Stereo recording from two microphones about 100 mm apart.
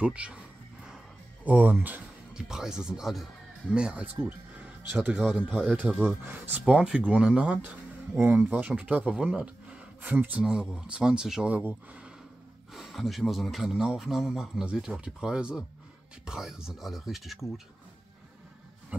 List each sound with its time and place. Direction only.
0.0 s speech: 10° right (ahead or behind)
0.8 s a sound: 10° right (ahead or behind)
2.3 s speech: 5° right (ahead or behind)
5.3 s speech: 5° right (ahead or behind)
6.6 s speech: 5° right (ahead or behind)
12.7 s speech: centre (ahead or behind)